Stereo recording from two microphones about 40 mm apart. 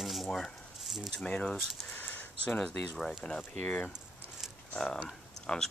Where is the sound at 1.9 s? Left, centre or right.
Left.